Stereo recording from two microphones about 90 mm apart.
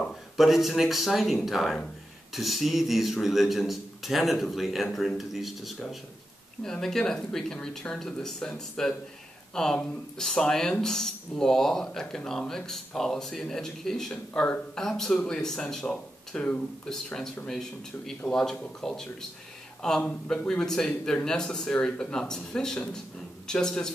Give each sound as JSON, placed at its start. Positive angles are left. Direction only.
{"t": 0.4, "sound": "speech", "side_deg": 0}
{"t": 15.8, "sound": "speech", "side_deg": 15}